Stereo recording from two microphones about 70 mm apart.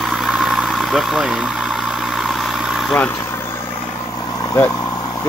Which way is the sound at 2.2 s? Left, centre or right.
Centre.